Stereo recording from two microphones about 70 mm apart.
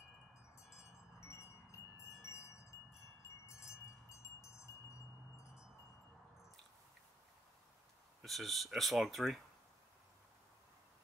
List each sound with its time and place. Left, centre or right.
0.7 s wind chime: left
8.2 s speech: centre